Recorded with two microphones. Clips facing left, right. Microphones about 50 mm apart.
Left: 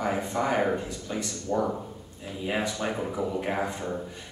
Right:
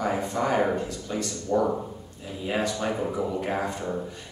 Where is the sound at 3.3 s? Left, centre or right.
Centre.